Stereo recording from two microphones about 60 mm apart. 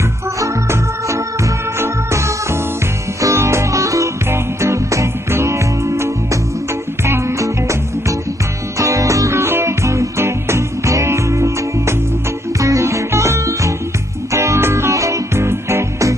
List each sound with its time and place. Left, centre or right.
0.4 s organ: right
1.8 s music: right
7.1 s music: right
8.7 s music: right